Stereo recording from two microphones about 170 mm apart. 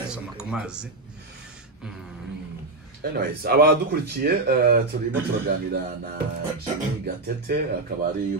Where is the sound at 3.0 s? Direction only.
65° right (ahead or behind).